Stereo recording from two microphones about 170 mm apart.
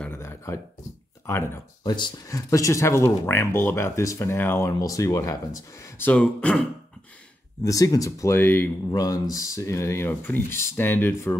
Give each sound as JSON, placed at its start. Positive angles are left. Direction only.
{"t": 0.0, "sound": "a sound", "side_deg": 15}
{"t": 1.2, "sound": "speech", "side_deg": 15}
{"t": 7.6, "sound": "speech", "side_deg": 20}
{"t": 8.9, "sound": "speech", "side_deg": 20}